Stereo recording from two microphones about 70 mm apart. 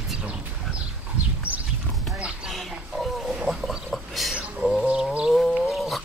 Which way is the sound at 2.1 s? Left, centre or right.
Centre.